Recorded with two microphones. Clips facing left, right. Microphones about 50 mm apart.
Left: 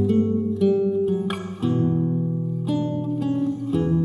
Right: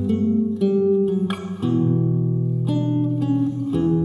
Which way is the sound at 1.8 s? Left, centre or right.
Left.